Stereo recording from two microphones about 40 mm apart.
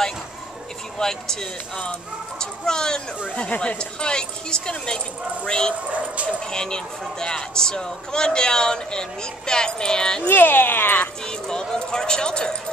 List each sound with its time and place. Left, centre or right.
0.9 s speech: centre
2.6 s speech: centre
3.3 s a man's voice: left
5.9 s speech: right
6.5 s a man's voice: centre
10.2 s speech: left
11.2 s a man's voice: centre